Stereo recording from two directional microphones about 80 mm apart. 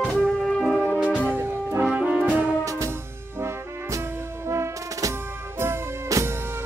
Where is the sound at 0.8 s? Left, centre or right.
Centre.